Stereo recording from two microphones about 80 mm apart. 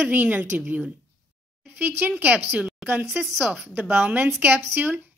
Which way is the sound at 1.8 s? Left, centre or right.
Right.